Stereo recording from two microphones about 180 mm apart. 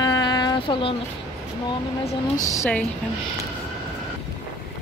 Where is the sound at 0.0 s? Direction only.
20° left (ahead or behind).